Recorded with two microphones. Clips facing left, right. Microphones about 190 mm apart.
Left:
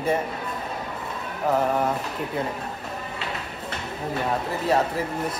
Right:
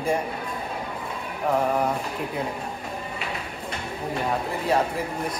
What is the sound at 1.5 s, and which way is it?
Speech, 5° left (ahead or behind).